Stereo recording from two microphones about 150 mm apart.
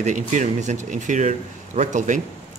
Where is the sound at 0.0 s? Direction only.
55° right (ahead or behind).